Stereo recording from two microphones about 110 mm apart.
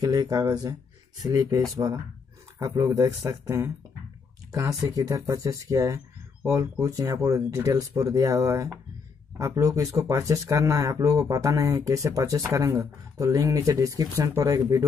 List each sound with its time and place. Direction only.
0.0 s speech: 35° right (ahead or behind)